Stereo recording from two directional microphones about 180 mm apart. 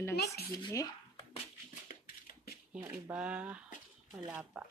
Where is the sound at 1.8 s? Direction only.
55° left (ahead or behind).